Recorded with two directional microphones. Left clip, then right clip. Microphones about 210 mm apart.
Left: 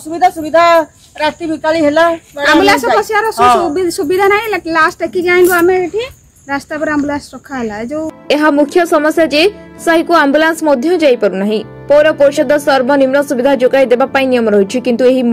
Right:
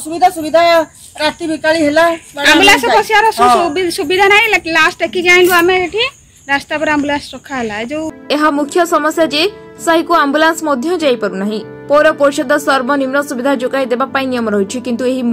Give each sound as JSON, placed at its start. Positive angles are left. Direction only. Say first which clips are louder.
{"t": 0.1, "sound": "speech", "louder": "even", "side_deg": 5}
{"t": 3.1, "sound": "a woman's voice", "louder": "right 1 dB", "side_deg": 45}
{"t": 8.3, "sound": "a woman's voice", "louder": "left 3 dB", "side_deg": 5}